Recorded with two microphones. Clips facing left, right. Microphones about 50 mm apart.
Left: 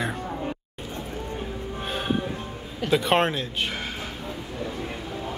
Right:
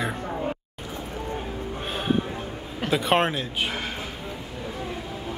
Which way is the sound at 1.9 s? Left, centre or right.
Centre.